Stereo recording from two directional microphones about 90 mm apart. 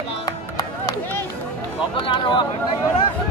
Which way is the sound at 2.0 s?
65° left (ahead or behind).